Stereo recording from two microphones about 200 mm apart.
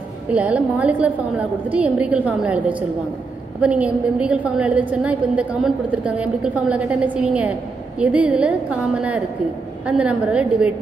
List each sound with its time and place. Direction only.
0.3 s a woman's voice: 5° right (ahead or behind)